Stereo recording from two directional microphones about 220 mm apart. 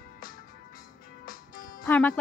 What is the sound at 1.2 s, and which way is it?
Music, 40° left (ahead or behind).